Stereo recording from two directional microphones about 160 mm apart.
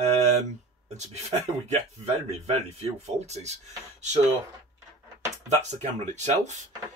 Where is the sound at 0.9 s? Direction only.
45° right (ahead or behind).